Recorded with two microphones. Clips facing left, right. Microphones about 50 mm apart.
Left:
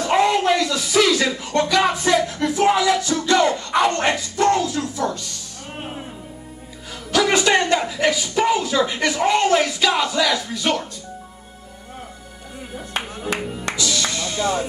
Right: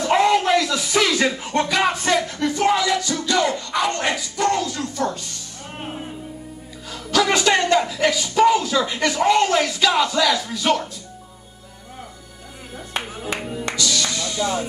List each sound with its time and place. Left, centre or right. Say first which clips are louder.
0.0 s a sound: even; centre
1.4 s music: left 1 dB; right
1.7 s music: left 2 dB; centre; by 4.6 s left
4.6 s music: left 2 dB; centre
6.9 s a sound: even; centre
13.2 s music: left 1 dB; centre
13.7 s music: right 1 dB; centre